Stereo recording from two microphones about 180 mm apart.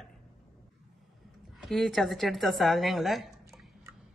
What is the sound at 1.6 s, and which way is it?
A woman's voice, centre (ahead or behind).